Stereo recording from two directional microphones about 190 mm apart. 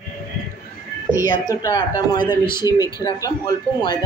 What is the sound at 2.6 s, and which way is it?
Speech, 20° left (ahead or behind).